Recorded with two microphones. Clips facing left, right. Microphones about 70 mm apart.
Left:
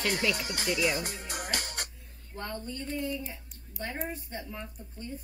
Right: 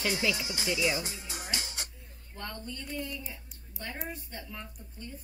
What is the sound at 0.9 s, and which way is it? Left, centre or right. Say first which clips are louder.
Music: left 2 dB; left.